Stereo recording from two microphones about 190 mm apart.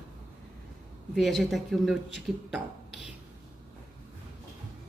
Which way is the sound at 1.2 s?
Centre (ahead or behind).